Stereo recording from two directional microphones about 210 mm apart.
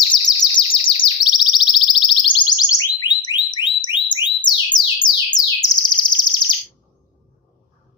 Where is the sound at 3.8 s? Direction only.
20° left (ahead or behind).